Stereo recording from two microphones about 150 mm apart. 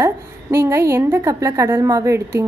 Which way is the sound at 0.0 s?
20° right (ahead or behind).